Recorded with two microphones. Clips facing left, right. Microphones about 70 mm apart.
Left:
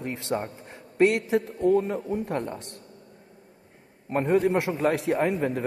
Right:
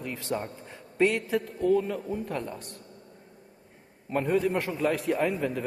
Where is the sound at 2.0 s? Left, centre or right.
Left.